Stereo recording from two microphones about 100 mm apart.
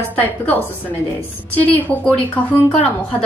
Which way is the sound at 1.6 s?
15° left (ahead or behind).